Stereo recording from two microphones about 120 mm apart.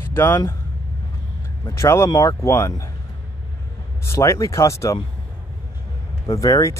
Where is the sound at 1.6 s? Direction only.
25° left (ahead or behind).